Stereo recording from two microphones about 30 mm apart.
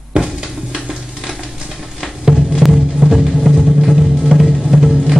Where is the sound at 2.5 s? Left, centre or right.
Centre.